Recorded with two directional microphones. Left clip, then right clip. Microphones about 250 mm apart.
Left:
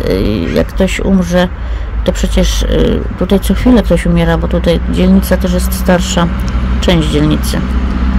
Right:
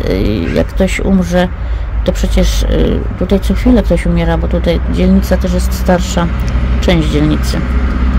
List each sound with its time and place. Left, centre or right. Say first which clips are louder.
0.0 s speech: left 1 dB; centre